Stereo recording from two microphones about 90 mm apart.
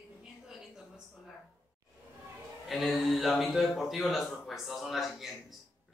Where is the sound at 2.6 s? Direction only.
Centre (ahead or behind).